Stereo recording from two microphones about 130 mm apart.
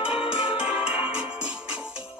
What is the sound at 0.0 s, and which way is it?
Music, 5° right (ahead or behind).